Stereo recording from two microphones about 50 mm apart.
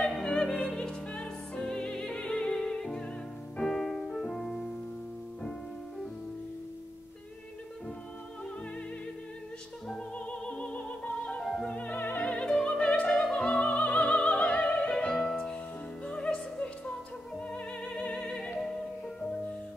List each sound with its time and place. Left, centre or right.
0.0 s music: centre
9.9 s music: left
12.2 s music: left
12.6 s opera: left
13.1 s music: centre
13.4 s music: left